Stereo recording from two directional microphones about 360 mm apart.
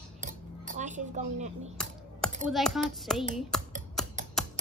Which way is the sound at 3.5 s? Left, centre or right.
Centre.